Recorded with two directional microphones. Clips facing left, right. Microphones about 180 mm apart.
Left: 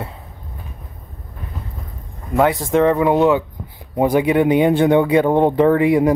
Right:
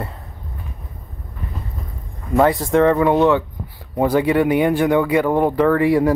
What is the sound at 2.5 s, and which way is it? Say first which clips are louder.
Speech: even; 20° left (ahead or behind).